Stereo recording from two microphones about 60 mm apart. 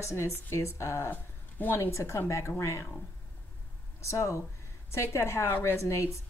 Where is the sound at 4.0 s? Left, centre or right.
Left.